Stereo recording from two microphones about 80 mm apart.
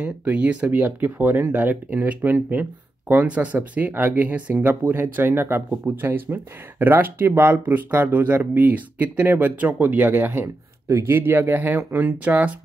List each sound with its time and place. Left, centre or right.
0.0 s speech: centre